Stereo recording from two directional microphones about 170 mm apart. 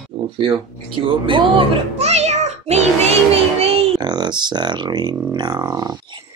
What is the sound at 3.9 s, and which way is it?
Speech, 25° right (ahead or behind).